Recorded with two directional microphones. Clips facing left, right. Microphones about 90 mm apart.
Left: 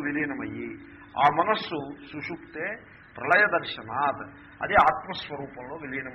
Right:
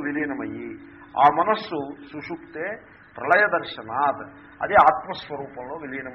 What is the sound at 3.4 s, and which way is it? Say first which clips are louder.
A man's voice: right 3 dB; 25° right (ahead or behind).